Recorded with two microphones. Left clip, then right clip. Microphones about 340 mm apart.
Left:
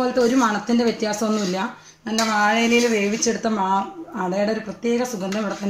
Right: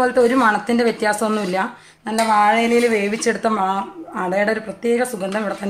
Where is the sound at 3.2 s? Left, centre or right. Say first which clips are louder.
Right 3 dB; right.